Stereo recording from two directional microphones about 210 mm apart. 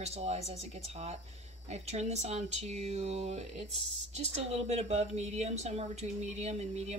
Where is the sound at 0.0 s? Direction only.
30° right (ahead or behind).